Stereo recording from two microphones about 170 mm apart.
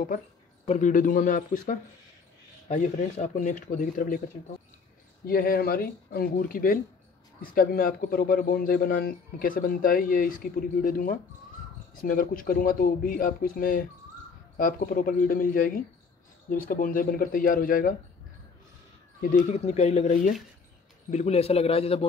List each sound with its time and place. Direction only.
0.7 s speech: 45° left (ahead or behind)
5.2 s speech: 60° left (ahead or behind)
19.3 s speech: 40° left (ahead or behind)